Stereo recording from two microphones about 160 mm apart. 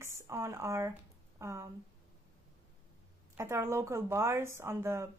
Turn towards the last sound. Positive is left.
turn(degrees=-15)  # may be behind; listen again after turning